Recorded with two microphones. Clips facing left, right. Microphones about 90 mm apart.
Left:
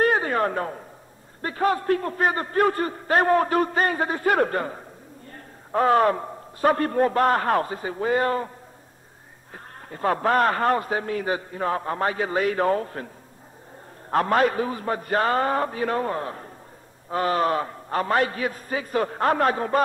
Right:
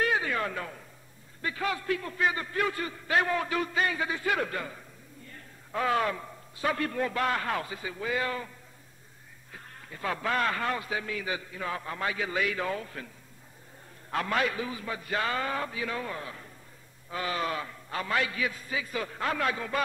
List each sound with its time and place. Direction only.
0.0 s a sound: 45° left (ahead or behind)
1.4 s a man's voice: 40° left (ahead or behind)
14.1 s a man's voice: 45° left (ahead or behind)